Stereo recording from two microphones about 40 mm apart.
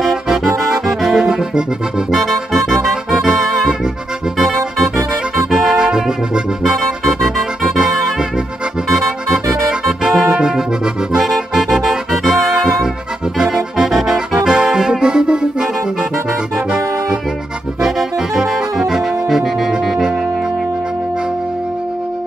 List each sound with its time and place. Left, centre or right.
0.0 s music: centre
1.2 s accordion: centre
2.0 s music: centre
6.7 s music: centre
9.8 s music: centre
10.3 s music: centre
13.5 s accordion: centre
17.8 s saxophone: centre